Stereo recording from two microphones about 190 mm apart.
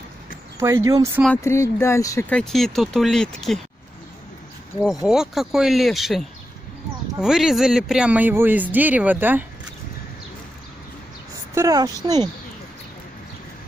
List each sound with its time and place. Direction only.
0.6 s speech: 15° right (ahead or behind)
1.4 s speech: 15° left (ahead or behind)
5.0 s speech: centre (ahead or behind)
11.5 s a woman's voice: 20° right (ahead or behind)